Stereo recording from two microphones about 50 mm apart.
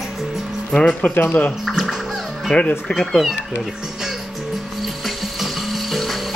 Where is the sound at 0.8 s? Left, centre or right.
Left.